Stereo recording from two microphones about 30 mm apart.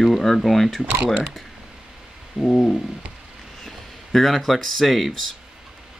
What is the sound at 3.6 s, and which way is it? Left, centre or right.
Speech, centre.